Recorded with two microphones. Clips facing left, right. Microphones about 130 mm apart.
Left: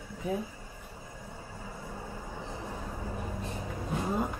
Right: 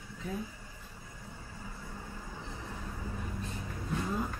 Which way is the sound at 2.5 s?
30° left (ahead or behind).